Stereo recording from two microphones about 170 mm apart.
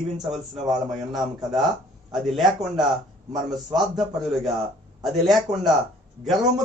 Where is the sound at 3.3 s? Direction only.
20° right (ahead or behind).